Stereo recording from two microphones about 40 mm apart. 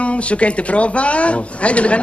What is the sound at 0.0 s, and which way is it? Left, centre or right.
Speech, left.